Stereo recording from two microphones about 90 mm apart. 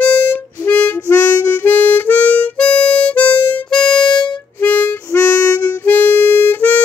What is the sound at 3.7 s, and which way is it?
Music, 5° left (ahead or behind).